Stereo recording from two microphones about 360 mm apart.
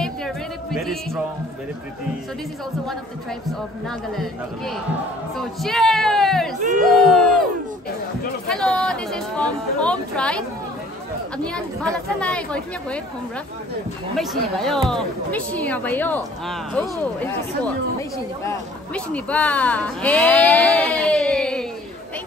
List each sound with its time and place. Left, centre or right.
0.0 s music: centre
5.3 s speech: centre
6.6 s speech: right
8.5 s speech: centre
14.1 s speech: centre
18.9 s speech: centre